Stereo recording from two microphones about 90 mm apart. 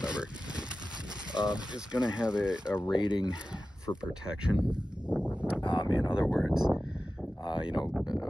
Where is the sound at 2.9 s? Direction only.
60° left (ahead or behind).